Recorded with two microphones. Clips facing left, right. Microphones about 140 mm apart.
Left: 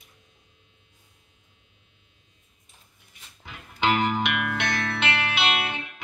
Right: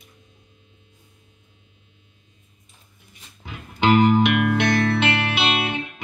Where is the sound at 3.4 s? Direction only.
35° right (ahead or behind).